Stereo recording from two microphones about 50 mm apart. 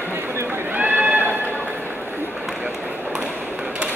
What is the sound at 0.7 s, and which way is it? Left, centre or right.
Run, right.